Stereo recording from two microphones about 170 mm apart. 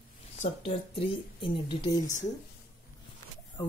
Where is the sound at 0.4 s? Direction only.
35° left (ahead or behind).